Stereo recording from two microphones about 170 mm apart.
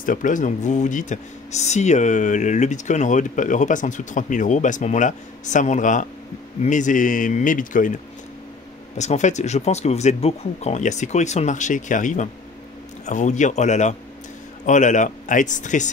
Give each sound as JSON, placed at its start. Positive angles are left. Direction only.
{"t": 0.0, "sound": "speech", "side_deg": 50}